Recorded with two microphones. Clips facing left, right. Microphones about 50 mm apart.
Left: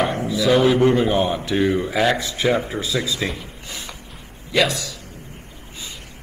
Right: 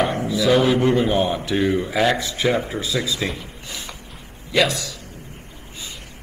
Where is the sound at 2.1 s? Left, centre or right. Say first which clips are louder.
Left 1 dB; left.